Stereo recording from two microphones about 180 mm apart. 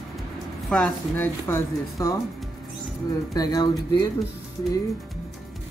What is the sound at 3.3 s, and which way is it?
Speech, 20° left (ahead or behind).